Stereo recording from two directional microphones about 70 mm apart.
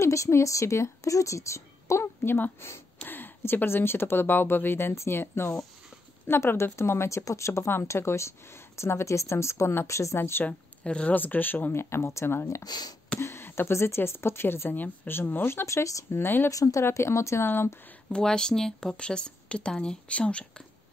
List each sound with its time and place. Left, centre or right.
0.0 s a woman's voice: left
10.4 s a woman's voice: centre; by 12.6 s left
12.6 s speech: left
13.2 s speech: left
16.2 s speech: left
16.4 s speech: left
18.1 s speech: centre